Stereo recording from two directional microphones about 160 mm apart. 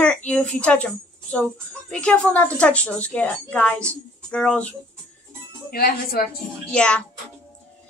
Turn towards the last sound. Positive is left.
turn(degrees=5)  # may be behind; listen again after turning